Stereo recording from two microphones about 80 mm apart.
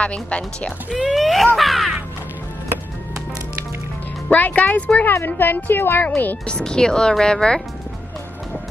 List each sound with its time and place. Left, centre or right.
0.0 s speech: centre
0.8 s speech: centre
4.3 s speech: centre